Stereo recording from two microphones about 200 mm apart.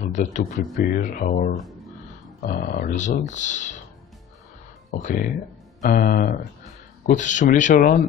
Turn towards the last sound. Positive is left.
turn(degrees=40)  # may be behind; listen again after turning